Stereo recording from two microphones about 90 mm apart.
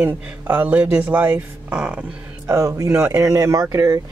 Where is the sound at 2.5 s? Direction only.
40° right (ahead or behind).